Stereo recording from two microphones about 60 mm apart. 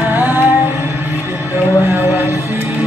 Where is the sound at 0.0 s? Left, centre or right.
Right.